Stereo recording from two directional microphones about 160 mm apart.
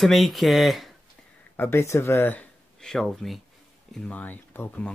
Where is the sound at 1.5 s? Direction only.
15° left (ahead or behind).